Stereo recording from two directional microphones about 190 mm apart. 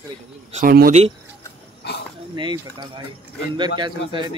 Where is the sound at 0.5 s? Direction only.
45° right (ahead or behind).